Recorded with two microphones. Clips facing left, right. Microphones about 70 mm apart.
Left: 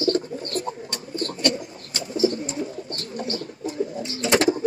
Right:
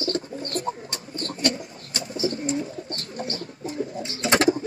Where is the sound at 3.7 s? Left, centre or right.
Right.